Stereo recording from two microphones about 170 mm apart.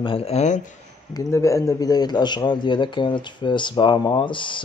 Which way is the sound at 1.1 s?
20° left (ahead or behind).